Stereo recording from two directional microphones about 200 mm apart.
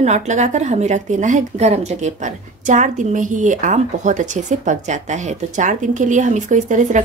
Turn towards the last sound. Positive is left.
turn(degrees=-40)  # may be behind; listen again after turning